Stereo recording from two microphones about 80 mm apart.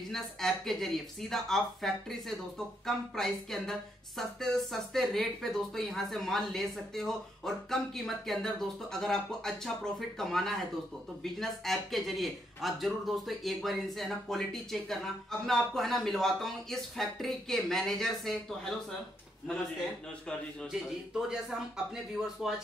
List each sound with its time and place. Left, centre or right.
0.1 s speech: centre
20.7 s speech: centre